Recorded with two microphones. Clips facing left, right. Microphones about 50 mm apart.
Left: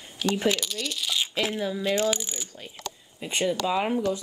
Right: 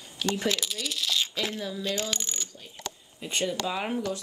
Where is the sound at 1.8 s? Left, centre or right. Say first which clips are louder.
Left 7 dB; centre.